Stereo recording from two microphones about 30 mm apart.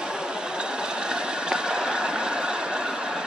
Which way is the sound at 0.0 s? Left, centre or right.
Right.